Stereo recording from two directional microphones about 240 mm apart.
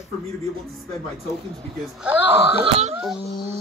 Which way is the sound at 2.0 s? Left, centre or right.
Centre.